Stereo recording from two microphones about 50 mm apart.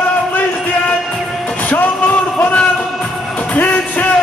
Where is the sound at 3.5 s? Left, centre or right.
Left.